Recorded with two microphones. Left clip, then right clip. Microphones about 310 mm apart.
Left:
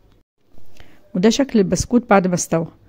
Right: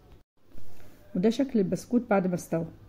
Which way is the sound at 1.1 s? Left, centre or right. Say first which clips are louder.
Left 10 dB; left.